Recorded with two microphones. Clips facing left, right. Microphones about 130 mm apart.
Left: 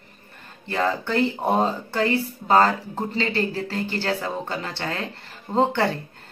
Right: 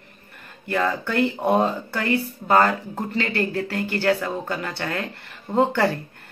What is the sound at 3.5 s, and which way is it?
Speech, 55° right (ahead or behind).